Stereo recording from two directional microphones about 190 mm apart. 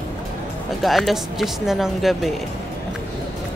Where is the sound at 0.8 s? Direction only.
Centre (ahead or behind).